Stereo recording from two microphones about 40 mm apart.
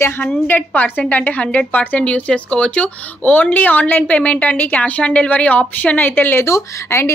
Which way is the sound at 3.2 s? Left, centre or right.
Left.